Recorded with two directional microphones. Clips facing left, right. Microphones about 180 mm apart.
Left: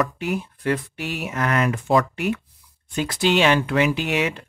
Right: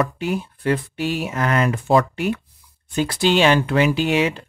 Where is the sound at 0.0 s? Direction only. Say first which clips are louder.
Right 2 dB; 30° right (ahead or behind).